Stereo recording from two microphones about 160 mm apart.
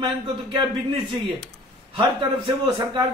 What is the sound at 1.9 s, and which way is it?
Speech, 30° right (ahead or behind).